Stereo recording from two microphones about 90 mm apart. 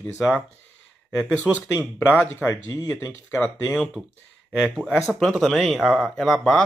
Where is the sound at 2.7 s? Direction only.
40° left (ahead or behind).